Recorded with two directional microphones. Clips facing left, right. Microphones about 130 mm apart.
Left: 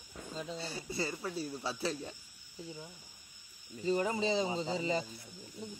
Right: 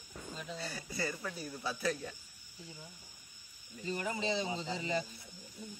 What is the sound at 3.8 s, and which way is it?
Speech, 35° left (ahead or behind).